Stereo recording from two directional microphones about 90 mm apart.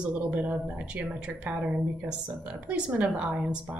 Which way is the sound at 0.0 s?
5° right (ahead or behind).